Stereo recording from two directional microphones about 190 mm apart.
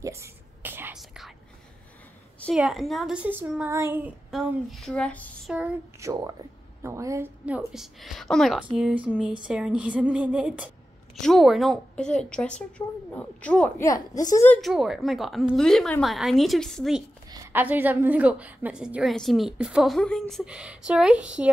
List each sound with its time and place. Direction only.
0.0 s whispering: 15° right (ahead or behind)
2.4 s a woman's voice: centre (ahead or behind)
5.5 s a woman's voice: 10° right (ahead or behind); by 13.8 s 5° left (ahead or behind)
14.1 s a woman's voice: 20° left (ahead or behind)
14.5 s a woman's voice: centre (ahead or behind)
17.3 s a woman's voice: 10° right (ahead or behind)